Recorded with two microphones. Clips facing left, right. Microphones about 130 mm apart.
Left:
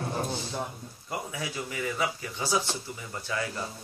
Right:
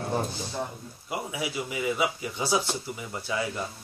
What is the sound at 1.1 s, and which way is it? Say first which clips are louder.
A man's voice: right 3 dB; 10° right (ahead or behind).